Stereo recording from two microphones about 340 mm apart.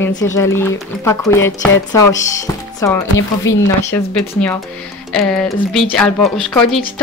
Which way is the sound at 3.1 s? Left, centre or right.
Left.